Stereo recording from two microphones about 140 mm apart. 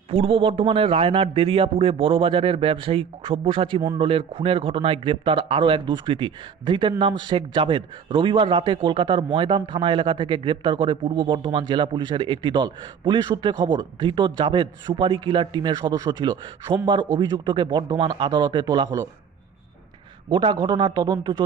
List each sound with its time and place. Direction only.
0.1 s speech: 40° right (ahead or behind)
20.2 s a man's voice: 35° right (ahead or behind)